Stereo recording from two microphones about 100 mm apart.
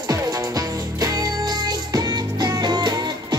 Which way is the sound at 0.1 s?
35° right (ahead or behind).